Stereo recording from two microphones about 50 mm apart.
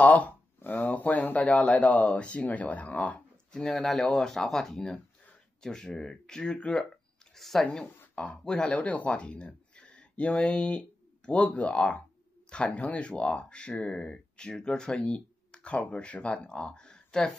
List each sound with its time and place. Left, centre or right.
0.0 s speech: left
3.7 s speech: centre
6.6 s speech: left
7.3 s speech: centre
8.0 s a sound: left
8.5 s speech: centre